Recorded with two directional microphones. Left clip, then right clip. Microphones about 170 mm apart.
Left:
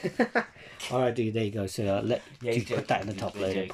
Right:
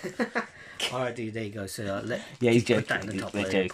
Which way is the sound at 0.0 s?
10° left (ahead or behind).